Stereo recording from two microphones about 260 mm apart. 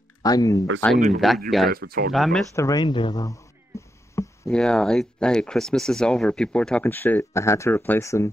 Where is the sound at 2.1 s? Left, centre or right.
Centre.